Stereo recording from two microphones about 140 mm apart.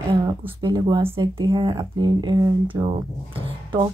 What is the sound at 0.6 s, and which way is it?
Speech, 30° right (ahead or behind).